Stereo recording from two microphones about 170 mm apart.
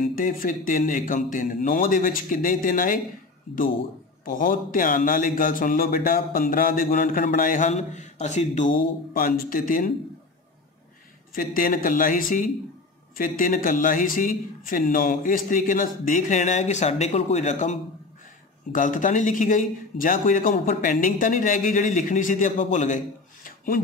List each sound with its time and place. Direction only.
0.0 s speech: 55° left (ahead or behind)
4.2 s speech: 55° left (ahead or behind)
11.3 s speech: 55° left (ahead or behind)
23.4 s a sound: 55° left (ahead or behind)